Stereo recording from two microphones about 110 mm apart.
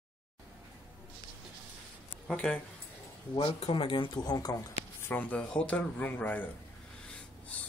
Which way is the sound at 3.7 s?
50° left (ahead or behind).